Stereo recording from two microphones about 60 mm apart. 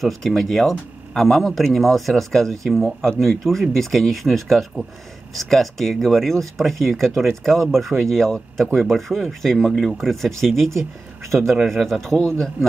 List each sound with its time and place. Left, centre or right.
0.0 s a man's voice: centre